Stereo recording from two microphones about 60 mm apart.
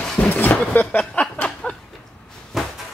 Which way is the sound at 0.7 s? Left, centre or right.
Left.